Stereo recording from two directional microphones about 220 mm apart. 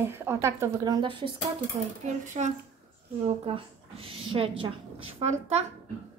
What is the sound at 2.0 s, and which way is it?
A woman's voice, 35° right (ahead or behind).